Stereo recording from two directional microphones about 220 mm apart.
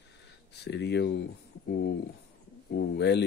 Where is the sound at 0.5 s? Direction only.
50° left (ahead or behind).